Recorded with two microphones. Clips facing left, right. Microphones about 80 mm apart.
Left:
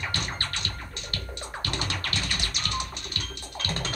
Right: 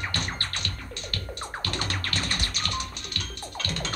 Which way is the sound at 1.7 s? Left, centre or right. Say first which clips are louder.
Even; right.